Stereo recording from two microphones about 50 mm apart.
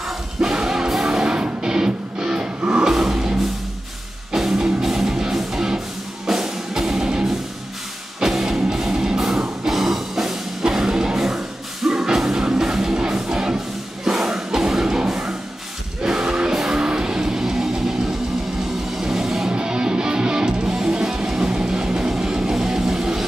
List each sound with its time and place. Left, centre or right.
0.4 s music: centre